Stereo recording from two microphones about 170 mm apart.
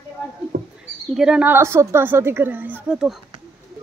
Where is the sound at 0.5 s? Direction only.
65° right (ahead or behind).